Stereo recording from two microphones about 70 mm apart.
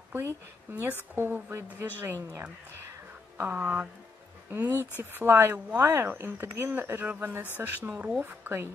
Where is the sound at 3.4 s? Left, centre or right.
Right.